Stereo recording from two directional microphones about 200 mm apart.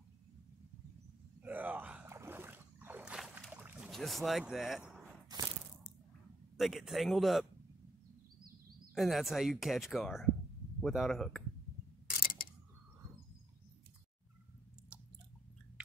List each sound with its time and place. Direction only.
1.4 s gasp: 10° right (ahead or behind)
6.5 s speech: centre (ahead or behind)
8.9 s speech: centre (ahead or behind)
12.2 s a sound: 45° left (ahead or behind)